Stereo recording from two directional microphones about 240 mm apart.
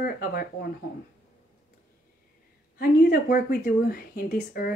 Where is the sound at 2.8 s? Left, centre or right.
Left.